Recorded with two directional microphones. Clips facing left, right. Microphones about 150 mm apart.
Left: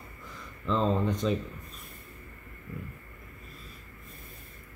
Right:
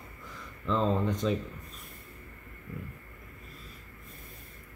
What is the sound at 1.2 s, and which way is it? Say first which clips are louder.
Speech: left 1 dB; 20° left (ahead or behind).